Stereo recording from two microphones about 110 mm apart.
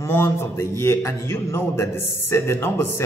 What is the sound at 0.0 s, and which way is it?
A man's voice, 25° left (ahead or behind).